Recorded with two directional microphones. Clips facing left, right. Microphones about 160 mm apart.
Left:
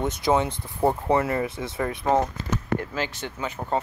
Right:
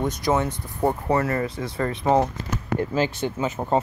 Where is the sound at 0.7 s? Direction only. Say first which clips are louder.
Even; 10° left (ahead or behind).